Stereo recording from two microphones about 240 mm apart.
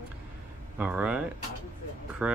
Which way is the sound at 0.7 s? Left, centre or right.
Centre.